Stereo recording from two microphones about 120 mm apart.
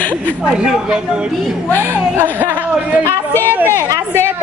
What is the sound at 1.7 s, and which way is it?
A woman's voice, 15° right (ahead or behind).